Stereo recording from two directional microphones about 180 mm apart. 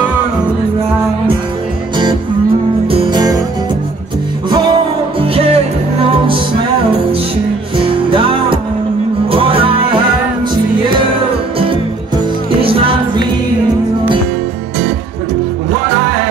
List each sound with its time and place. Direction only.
2.9 s music: 25° right (ahead or behind)
4.5 s music: 25° right (ahead or behind)
7.7 s music: 30° right (ahead or behind)
12.6 s music: 30° right (ahead or behind)